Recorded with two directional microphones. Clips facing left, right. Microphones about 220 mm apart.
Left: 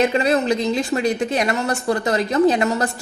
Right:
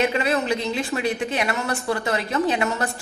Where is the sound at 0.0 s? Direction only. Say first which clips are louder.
Left 4 dB; 40° left (ahead or behind).